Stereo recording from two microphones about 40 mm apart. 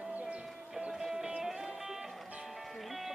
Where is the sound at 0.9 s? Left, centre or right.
Centre.